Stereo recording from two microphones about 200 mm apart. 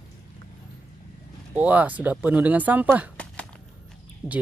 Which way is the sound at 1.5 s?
5° right (ahead or behind).